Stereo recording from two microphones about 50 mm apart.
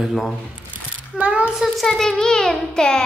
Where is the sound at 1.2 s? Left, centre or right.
Right.